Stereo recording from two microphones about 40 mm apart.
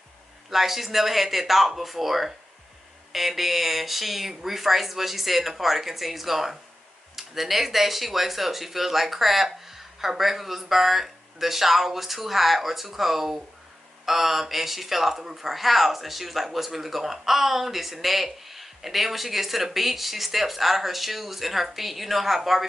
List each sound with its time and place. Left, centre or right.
0.5 s speech: centre